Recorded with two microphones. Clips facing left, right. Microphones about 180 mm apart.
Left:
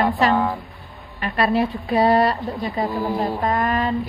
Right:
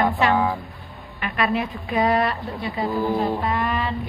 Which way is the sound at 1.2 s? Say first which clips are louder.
Left 4 dB; 35° left (ahead or behind).